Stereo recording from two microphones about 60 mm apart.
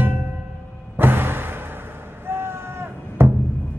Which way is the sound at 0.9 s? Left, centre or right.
Right.